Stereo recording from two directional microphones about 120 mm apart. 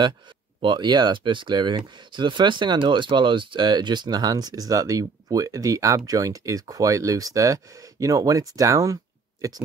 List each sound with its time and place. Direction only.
0.6 s speech: 40° right (ahead or behind)